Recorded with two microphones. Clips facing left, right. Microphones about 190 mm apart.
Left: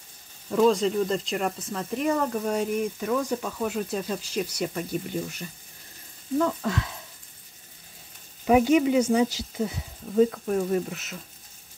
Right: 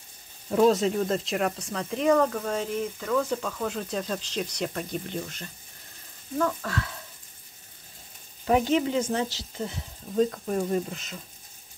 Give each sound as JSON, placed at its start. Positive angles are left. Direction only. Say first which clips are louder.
{"t": 0.5, "sound": "speech", "louder": "even", "side_deg": -5}
{"t": 8.5, "sound": "speech", "louder": "left 4 dB", "side_deg": 10}